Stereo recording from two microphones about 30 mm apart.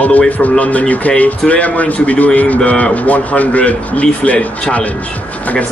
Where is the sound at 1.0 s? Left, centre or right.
Left.